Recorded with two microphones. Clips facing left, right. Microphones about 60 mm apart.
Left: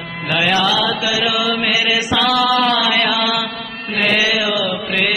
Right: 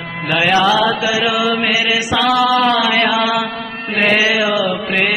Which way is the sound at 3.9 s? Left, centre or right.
Right.